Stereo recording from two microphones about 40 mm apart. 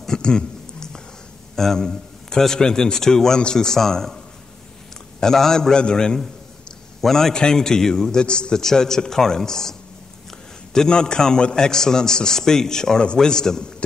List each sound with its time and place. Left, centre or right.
0.0 s a sound: centre
1.5 s a man's voice: centre
5.2 s a man's voice: centre
7.0 s a man's voice: centre
8.6 s a man's voice: centre